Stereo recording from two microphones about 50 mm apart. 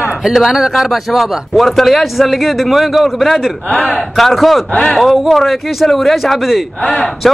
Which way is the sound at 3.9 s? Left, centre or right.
Centre.